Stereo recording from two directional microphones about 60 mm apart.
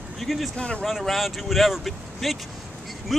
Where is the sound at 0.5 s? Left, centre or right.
Centre.